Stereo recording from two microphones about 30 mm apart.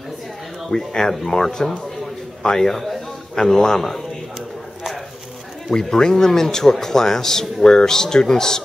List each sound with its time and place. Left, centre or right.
0.7 s a man's voice: centre
5.7 s a man's voice: left